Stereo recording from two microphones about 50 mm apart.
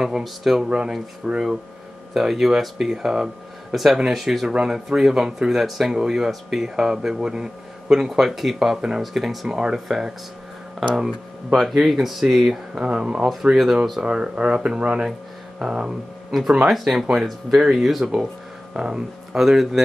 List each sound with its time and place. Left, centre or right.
0.2 s speech: centre
0.7 s speech: centre
12.7 s speech: right
13.2 s speech: centre
16.3 s speech: centre
18.0 s speech: centre